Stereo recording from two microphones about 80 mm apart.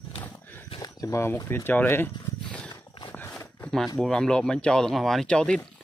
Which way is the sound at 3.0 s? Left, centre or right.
Left.